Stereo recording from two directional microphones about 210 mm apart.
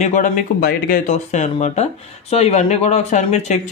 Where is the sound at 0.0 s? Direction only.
35° left (ahead or behind).